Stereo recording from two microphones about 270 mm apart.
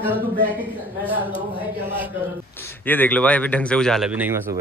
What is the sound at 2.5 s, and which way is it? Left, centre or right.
A man's voice, centre.